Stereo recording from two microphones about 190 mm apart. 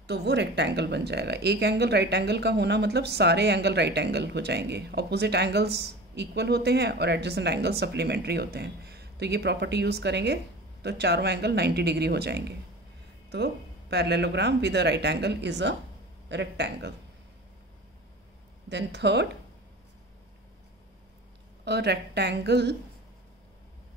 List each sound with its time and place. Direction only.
0.0 s speech: 60° right (ahead or behind)
18.7 s speech: 65° right (ahead or behind)
21.6 s speech: 60° right (ahead or behind)